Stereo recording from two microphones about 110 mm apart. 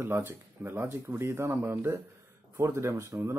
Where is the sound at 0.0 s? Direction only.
25° right (ahead or behind).